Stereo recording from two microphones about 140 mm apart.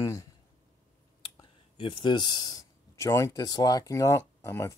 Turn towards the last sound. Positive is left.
turn(degrees=20)  # may be behind; listen again after turning